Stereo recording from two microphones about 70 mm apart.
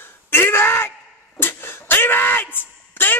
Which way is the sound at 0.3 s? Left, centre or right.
Left.